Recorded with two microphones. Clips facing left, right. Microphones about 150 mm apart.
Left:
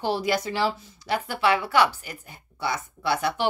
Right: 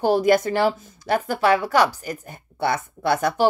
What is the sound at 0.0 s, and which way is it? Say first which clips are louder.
Speech: right 8 dB; 50° right (ahead or behind).